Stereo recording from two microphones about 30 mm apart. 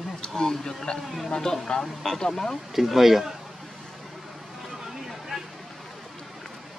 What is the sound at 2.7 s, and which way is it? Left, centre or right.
Speech, centre.